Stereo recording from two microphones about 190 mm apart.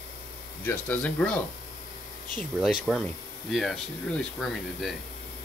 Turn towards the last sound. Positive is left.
turn(degrees=5)  # may be behind; listen again after turning